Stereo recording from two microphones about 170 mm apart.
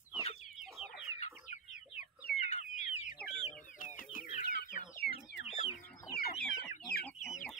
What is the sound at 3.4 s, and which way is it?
Chicken, 50° left (ahead or behind).